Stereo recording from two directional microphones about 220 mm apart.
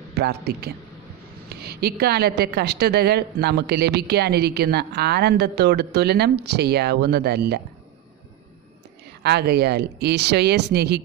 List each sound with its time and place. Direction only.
0.1 s a man's voice: 45° right (ahead or behind)
9.2 s a woman's voice: 50° right (ahead or behind)